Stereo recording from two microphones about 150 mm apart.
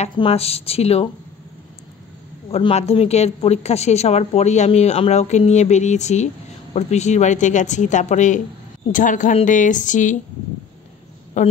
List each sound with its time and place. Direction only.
0.1 s speech: 40° left (ahead or behind)
2.5 s a woman's voice: 40° left (ahead or behind); by 10.1 s 55° left (ahead or behind)
11.4 s a woman's voice: 55° left (ahead or behind)